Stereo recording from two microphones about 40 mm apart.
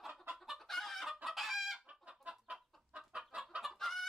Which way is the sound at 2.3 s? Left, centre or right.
Right.